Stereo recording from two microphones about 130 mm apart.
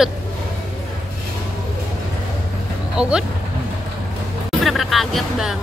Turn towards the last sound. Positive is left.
turn(degrees=0)  # may be behind; listen again after turning